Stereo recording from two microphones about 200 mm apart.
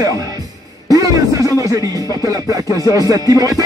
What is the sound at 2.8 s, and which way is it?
Music, 15° left (ahead or behind).